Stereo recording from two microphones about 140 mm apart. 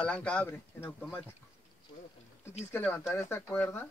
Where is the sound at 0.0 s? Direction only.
5° left (ahead or behind).